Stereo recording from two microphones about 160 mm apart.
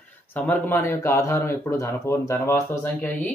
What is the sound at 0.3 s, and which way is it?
Speech, 10° left (ahead or behind).